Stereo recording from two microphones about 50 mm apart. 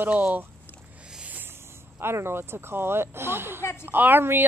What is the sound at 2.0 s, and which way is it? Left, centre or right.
Speech, right.